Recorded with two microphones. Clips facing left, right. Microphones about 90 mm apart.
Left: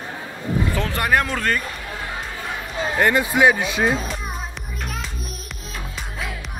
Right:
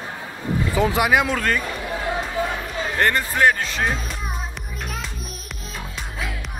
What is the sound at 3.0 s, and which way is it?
Speech, 10° left (ahead or behind).